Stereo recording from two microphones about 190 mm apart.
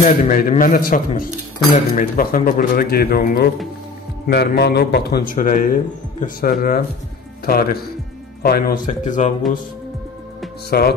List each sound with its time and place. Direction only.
0.0 s speech: 45° left (ahead or behind)
10.7 s music: 55° left (ahead or behind)